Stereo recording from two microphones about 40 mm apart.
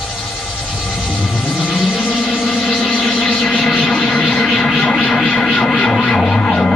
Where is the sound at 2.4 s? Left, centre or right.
Centre.